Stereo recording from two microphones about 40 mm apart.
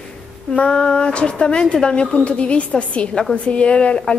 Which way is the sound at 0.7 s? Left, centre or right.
Left.